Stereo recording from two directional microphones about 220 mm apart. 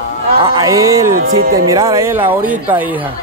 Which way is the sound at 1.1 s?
65° right (ahead or behind).